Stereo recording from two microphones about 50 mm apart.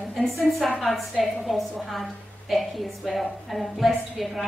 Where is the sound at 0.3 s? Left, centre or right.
Centre.